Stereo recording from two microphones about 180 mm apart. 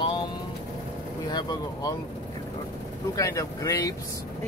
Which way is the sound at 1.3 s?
20° left (ahead or behind).